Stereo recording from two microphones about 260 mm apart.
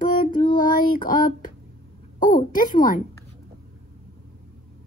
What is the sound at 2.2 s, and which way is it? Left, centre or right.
Speech, centre.